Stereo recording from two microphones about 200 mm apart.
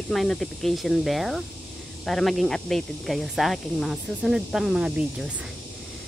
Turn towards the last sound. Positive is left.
turn(degrees=0)  # may be behind; listen again after turning